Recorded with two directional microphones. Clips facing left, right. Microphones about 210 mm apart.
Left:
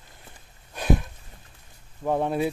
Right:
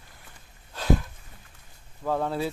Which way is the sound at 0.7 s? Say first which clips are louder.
Left 1 dB; 20° left (ahead or behind).